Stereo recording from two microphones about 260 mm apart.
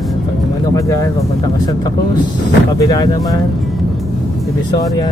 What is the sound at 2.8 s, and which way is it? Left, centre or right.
Speech, centre.